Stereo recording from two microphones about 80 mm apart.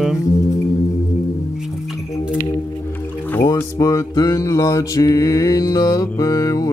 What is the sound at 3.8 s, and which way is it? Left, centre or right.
Mantra, left.